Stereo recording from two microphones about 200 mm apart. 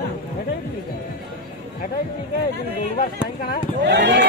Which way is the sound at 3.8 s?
60° right (ahead or behind).